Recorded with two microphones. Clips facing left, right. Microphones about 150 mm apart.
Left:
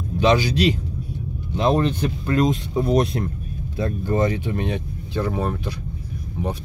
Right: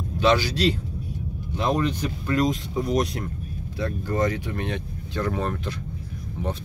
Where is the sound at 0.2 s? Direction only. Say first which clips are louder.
Left 3 dB; 15° left (ahead or behind).